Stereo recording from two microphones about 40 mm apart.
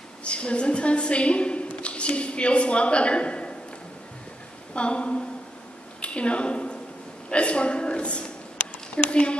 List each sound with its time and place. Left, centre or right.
0.2 s a woman's voice: left
4.7 s a woman's voice: left
5.9 s a sound: left
7.2 s speech: left